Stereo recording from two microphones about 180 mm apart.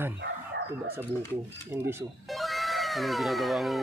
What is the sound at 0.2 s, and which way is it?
Chicken, 65° right (ahead or behind).